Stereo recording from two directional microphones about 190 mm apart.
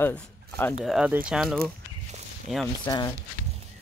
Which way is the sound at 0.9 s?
5° right (ahead or behind).